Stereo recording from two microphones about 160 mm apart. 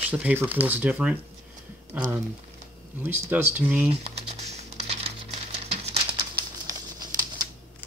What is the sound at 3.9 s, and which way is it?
Crumpling, 40° right (ahead or behind).